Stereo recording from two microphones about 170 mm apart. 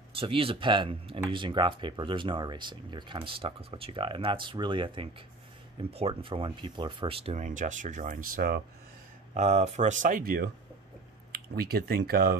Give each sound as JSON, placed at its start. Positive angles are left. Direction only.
{"t": 0.1, "sound": "speech", "side_deg": -30}
{"t": 7.4, "sound": "speech", "side_deg": -50}
{"t": 9.3, "sound": "speech", "side_deg": -40}